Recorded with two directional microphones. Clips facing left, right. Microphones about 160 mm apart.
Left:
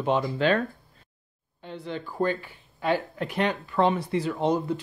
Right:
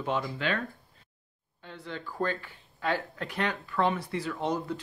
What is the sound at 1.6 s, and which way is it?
Speech, 20° left (ahead or behind).